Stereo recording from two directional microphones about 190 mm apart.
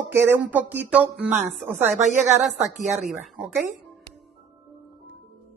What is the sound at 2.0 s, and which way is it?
Speech, 40° right (ahead or behind).